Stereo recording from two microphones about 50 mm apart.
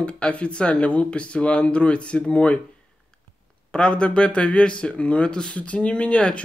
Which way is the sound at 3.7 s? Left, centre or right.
Centre.